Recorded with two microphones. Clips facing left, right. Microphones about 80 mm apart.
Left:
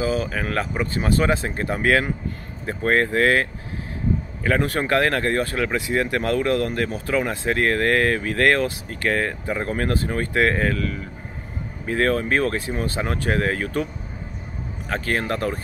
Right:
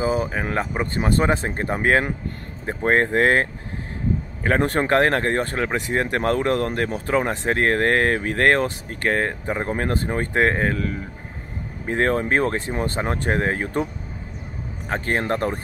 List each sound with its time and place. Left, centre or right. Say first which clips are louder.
0.0 s speech: right 1 dB; right
14.9 s speech: right 1 dB; right